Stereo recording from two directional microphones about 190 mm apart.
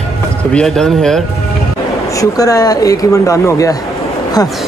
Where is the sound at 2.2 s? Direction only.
20° left (ahead or behind).